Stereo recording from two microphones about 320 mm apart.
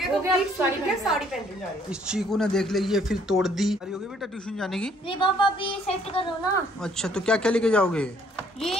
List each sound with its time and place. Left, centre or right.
0.0 s a woman's voice: centre
5.0 s a woman's voice: centre
6.8 s speech: centre